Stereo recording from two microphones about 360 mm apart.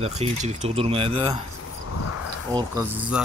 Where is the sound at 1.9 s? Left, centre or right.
Left.